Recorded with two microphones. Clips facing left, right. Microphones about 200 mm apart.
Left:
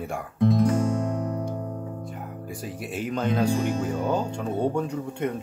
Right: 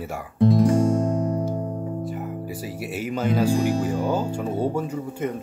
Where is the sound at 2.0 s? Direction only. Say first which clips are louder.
Right 6 dB; 5° right (ahead or behind).